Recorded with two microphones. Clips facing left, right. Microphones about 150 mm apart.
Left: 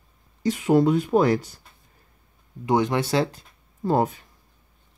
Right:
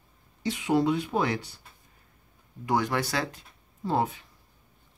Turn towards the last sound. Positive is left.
turn(degrees=45)  # may be behind; listen again after turning